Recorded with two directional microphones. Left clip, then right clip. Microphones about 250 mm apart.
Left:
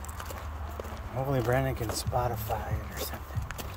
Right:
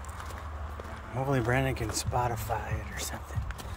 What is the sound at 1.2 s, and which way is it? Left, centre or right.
Speech, centre.